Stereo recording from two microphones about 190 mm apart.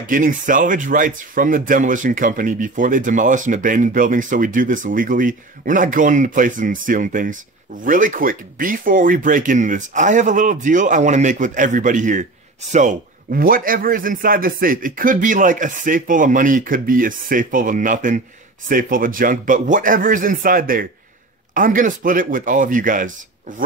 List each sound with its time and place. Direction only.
0.0 s speech: 45° right (ahead or behind)